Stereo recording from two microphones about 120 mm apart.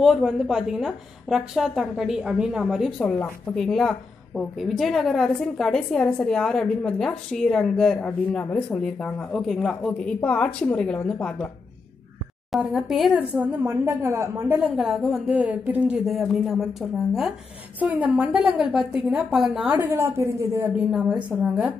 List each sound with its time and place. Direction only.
0.0 s a woman's voice: centre (ahead or behind)
12.5 s a woman's voice: centre (ahead or behind)
13.1 s a woman's voice: 10° right (ahead or behind)
14.8 s a woman's voice: 5° right (ahead or behind); by 20.7 s 25° right (ahead or behind)
20.9 s a woman's voice: 10° right (ahead or behind)